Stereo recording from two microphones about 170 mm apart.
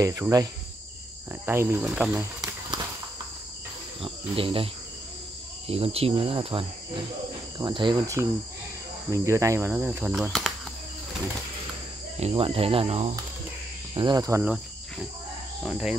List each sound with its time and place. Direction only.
0.0 s speech: 20° right (ahead or behind)
1.3 s cricket: 15° right (ahead or behind)
2.1 s a sound: 20° right (ahead or behind)
4.0 s cricket: 30° right (ahead or behind)
5.7 s speech: 35° right (ahead or behind)
9.1 s cricket: 15° right (ahead or behind); by 10.5 s centre (ahead or behind)
12.2 s speech: 35° right (ahead or behind)
13.9 s speech: 25° right (ahead or behind)
14.4 s insect: 5° right (ahead or behind)
15.6 s speech: 5° right (ahead or behind)